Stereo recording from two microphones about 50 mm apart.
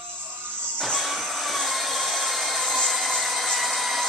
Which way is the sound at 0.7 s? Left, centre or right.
Centre.